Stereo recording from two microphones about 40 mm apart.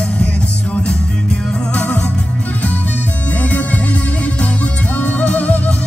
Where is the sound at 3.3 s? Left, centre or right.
Left.